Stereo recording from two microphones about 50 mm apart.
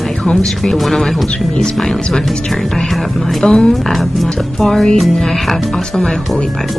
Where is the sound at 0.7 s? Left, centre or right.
Centre.